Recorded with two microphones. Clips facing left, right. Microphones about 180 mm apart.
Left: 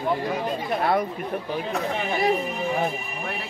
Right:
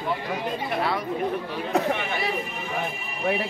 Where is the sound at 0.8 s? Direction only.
50° left (ahead or behind).